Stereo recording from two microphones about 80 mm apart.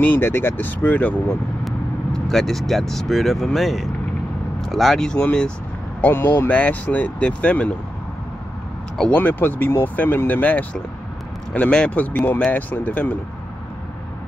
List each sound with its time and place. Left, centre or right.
0.0 s speech: left
2.1 s speech: centre
5.9 s speech: left
9.1 s speech: left